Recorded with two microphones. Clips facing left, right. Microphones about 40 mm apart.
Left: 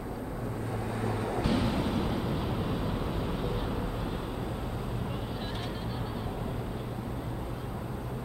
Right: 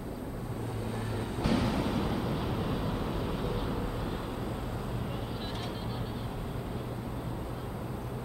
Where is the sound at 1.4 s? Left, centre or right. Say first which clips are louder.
Right 1 dB; left.